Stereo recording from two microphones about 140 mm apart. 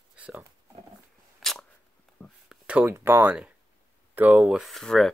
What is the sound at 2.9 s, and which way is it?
Speech, 15° right (ahead or behind).